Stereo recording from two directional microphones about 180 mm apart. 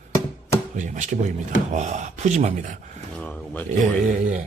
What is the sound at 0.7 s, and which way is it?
A man's voice, 45° right (ahead or behind).